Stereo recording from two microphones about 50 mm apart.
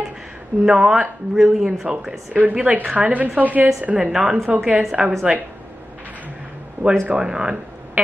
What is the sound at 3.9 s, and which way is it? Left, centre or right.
A woman's voice, centre.